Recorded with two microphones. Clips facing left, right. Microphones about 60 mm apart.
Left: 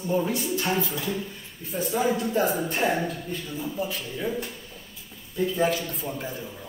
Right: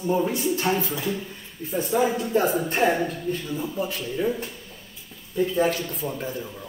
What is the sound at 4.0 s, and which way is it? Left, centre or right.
Speech, centre.